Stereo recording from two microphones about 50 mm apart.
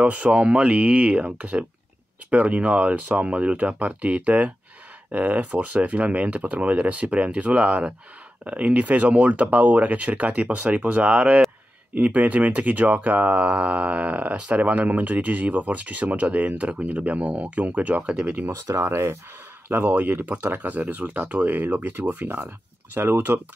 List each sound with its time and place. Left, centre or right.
0.0 s speech: right
18.7 s speech: right
19.8 s speech: right
22.9 s speech: right